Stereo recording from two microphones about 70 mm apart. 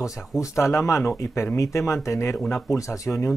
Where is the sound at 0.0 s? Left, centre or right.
Left.